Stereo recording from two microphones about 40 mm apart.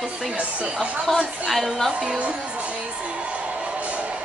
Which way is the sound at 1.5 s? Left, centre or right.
Centre.